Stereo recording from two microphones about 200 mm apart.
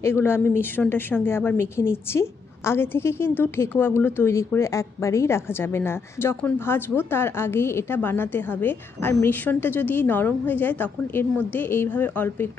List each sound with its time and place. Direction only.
0.0 s a woman's voice: 10° left (ahead or behind)